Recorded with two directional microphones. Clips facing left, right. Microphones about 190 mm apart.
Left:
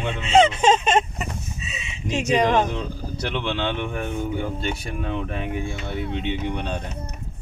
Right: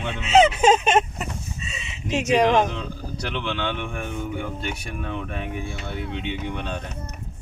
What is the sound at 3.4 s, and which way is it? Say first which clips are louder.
Speech: left 2 dB; 35° left (ahead or behind).